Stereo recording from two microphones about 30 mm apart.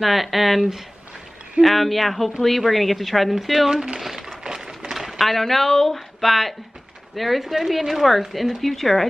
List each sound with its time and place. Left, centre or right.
0.0 s speech: centre
3.7 s speech: right
4.0 s a sound: centre
5.2 s speech: centre